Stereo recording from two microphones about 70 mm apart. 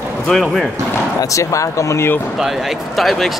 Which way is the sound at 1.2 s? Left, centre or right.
Left.